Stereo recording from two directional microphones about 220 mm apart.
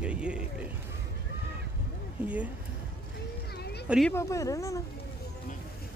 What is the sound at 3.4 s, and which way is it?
Cat, 45° left (ahead or behind).